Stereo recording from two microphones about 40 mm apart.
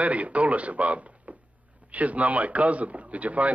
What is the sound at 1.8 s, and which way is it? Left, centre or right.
Speech, right.